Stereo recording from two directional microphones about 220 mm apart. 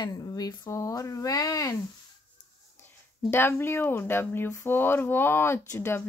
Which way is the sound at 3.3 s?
10° left (ahead or behind).